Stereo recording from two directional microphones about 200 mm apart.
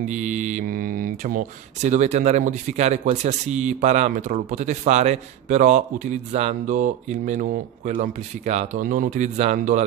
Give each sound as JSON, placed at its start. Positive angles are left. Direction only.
{"t": 0.0, "sound": "speech", "side_deg": -40}